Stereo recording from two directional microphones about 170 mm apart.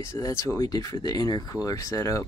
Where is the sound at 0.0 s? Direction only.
15° left (ahead or behind).